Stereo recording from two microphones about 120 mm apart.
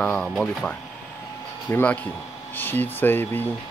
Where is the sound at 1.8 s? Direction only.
15° left (ahead or behind).